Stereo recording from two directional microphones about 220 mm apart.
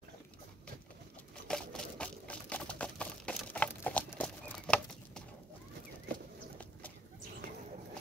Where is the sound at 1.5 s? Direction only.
5° left (ahead or behind).